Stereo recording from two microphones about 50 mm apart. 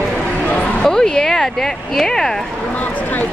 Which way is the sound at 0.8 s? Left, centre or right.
Centre.